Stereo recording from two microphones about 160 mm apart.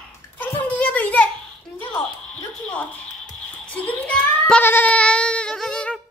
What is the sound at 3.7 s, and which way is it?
Child singing, 10° left (ahead or behind).